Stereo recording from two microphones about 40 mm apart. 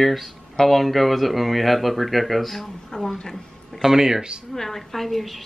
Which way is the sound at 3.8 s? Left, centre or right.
Centre.